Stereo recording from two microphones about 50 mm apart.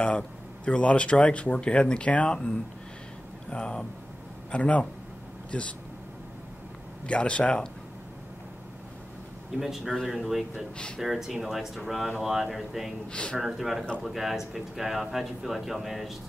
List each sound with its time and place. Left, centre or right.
0.7 s speech: left
7.1 s speech: left
9.6 s speech: centre
13.1 s speech: centre
13.4 s speech: centre